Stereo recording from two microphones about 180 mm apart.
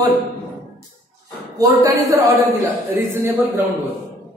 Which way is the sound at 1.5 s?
20° right (ahead or behind).